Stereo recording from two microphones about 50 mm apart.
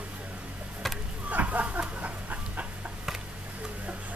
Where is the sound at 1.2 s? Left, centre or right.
Right.